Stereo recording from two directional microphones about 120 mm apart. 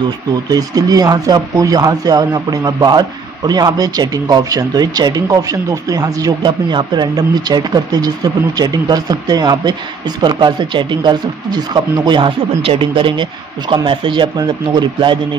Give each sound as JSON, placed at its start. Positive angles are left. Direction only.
{"t": 0.5, "sound": "speech", "side_deg": -30}